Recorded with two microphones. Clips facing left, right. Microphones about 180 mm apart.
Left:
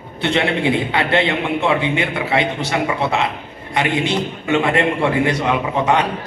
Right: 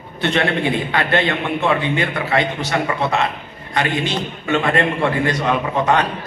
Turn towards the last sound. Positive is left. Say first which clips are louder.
# even
turn(degrees=15)  # may be behind; listen again after turning